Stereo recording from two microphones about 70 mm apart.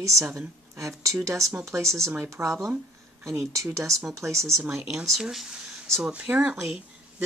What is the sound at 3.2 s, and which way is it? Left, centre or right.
Speech, right.